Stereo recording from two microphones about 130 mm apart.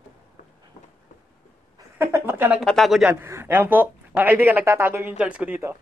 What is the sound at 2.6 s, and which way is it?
Speech, centre (ahead or behind).